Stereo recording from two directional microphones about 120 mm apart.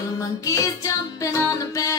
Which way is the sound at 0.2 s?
25° left (ahead or behind).